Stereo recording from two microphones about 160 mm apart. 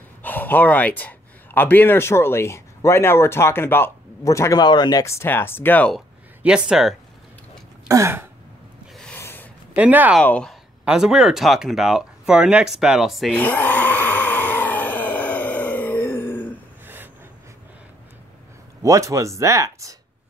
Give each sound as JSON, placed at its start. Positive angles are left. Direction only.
{"t": 0.2, "sound": "speech", "side_deg": 10}
{"t": 5.9, "sound": "speech", "side_deg": -5}
{"t": 7.9, "sound": "speech", "side_deg": -15}
{"t": 8.9, "sound": "a sound", "side_deg": 5}
{"t": 9.8, "sound": "speech", "side_deg": -10}
{"t": 10.2, "sound": "speech", "side_deg": 10}
{"t": 10.9, "sound": "speech", "side_deg": -5}
{"t": 13.3, "sound": "a sound", "side_deg": 10}
{"t": 16.8, "sound": "a sound", "side_deg": -10}
{"t": 18.8, "sound": "speech", "side_deg": -20}